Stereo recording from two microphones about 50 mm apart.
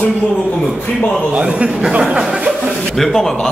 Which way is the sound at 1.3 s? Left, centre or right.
Right.